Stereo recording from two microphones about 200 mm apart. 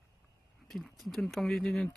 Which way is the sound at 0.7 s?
Centre (ahead or behind).